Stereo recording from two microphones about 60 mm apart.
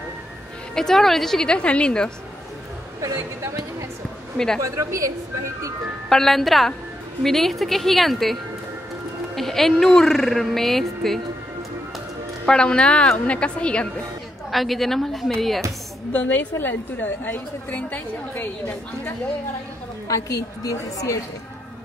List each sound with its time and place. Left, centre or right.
0.7 s a woman's voice: centre
4.6 s speech: right
6.0 s a woman's voice: centre
12.4 s a woman's voice: centre
14.5 s a woman's voice: centre
16.1 s a woman's voice: left
20.1 s a woman's voice: left